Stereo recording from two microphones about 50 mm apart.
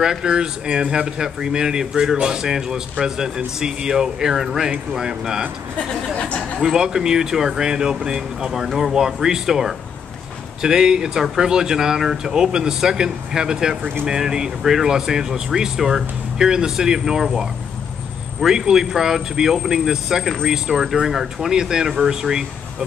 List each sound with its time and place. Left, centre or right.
0.0 s speech: centre
6.1 s speech: left
6.6 s speech: centre